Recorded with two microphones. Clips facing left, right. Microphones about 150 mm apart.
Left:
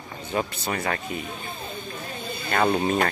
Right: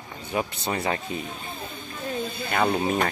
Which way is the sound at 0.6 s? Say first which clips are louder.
Right 1 dB; 25° right (ahead or behind).